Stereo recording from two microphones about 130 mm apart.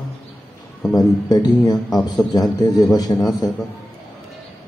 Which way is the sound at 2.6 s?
30° left (ahead or behind).